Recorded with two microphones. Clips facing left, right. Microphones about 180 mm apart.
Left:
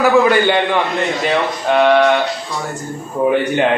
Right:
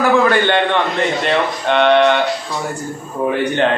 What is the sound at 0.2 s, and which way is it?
A man's voice, 10° left (ahead or behind).